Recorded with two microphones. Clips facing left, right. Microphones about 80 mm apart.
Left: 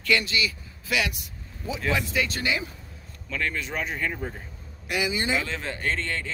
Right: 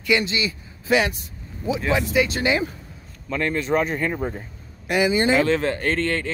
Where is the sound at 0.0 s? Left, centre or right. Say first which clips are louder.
Right 3 dB; right.